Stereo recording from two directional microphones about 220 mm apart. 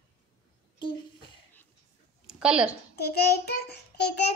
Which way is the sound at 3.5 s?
50° left (ahead or behind).